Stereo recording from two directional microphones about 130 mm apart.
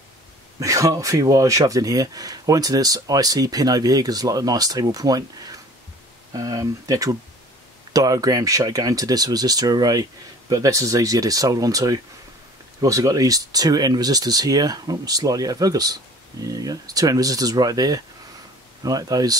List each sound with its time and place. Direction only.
0.6 s speech: 25° right (ahead or behind)